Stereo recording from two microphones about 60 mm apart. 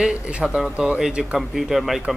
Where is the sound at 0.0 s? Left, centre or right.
Centre.